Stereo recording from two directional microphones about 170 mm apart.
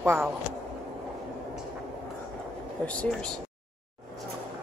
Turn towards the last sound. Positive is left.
turn(degrees=5)  # may be behind; listen again after turning